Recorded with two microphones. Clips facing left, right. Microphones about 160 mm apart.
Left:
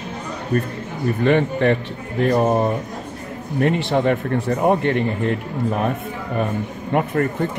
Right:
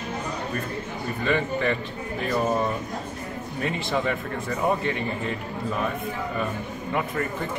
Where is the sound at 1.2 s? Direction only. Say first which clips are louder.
Left 7 dB; 60° left (ahead or behind).